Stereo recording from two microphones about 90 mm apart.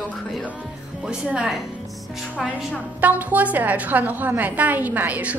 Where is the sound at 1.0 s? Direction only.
10° right (ahead or behind).